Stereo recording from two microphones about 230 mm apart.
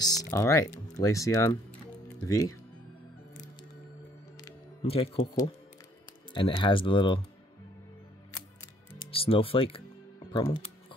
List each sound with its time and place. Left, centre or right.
0.2 s speech: centre
4.5 s speech: left
9.1 s speech: left
10.3 s music: centre